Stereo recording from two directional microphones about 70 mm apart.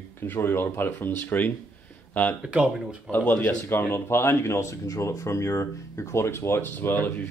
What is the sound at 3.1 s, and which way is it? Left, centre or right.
Speech, left.